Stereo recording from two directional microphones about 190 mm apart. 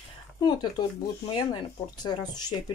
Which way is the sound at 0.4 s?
20° left (ahead or behind).